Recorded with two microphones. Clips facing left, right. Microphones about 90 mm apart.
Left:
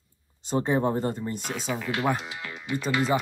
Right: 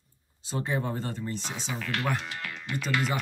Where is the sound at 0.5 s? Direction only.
35° left (ahead or behind).